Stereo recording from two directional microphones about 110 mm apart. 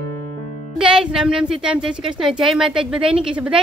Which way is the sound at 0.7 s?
5° right (ahead or behind).